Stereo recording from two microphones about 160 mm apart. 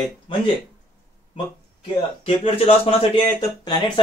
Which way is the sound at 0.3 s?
35° left (ahead or behind).